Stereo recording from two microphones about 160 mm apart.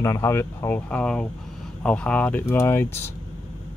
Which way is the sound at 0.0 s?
20° left (ahead or behind).